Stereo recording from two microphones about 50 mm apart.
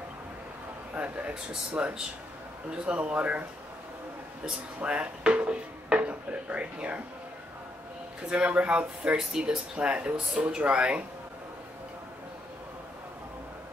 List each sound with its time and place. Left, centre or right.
0.9 s speech: right
4.7 s a sound: right
8.3 s speech: right